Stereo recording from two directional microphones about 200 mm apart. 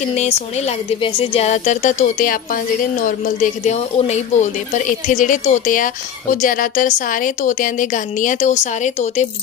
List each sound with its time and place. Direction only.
1.0 s speech: 30° left (ahead or behind)
3.3 s speech: 35° left (ahead or behind)